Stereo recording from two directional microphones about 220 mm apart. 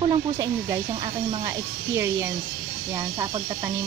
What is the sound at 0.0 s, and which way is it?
Speech, 15° right (ahead or behind).